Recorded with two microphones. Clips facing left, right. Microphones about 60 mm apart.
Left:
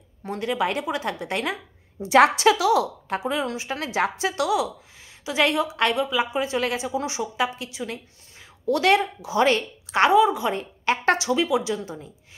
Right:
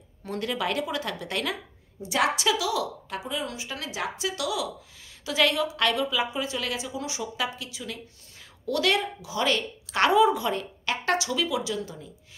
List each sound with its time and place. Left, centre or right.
0.2 s a woman's voice: centre
2.0 s a woman's voice: left
5.2 s a woman's voice: centre
9.8 s a woman's voice: centre
10.1 s a woman's voice: centre
10.5 s a woman's voice: left